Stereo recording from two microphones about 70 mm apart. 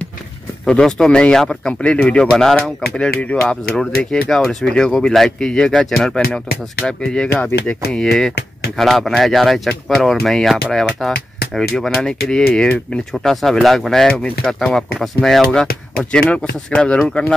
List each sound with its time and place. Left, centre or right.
0.7 s speech: centre
2.0 s speech: centre
2.3 s speech: centre
3.2 s speech: centre
4.0 s speech: centre
7.3 s speech: left
7.9 s speech: centre